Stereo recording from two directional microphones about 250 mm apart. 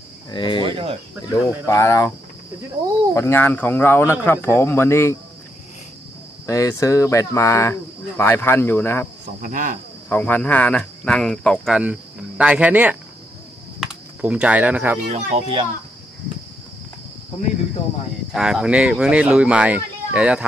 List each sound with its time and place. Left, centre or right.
0.3 s speech: centre
0.6 s speech: right
1.3 s speech: centre
3.2 s speech: centre
6.4 s speech: centre
9.4 s speech: right
10.0 s speech: centre
15.0 s speech: right
18.3 s speech: centre